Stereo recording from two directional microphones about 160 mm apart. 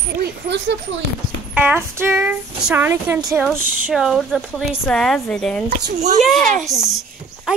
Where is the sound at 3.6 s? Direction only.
60° right (ahead or behind).